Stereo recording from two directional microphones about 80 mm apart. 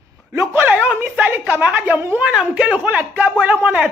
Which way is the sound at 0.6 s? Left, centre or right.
Centre.